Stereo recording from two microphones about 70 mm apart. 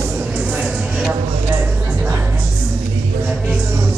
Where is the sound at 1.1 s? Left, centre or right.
Right.